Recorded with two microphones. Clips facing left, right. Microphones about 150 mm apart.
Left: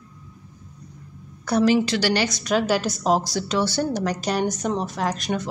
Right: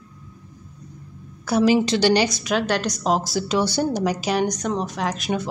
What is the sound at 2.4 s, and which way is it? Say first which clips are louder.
A woman's voice: left 1 dB; centre (ahead or behind).